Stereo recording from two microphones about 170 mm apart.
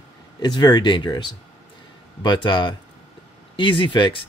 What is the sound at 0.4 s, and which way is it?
Speech, 25° left (ahead or behind).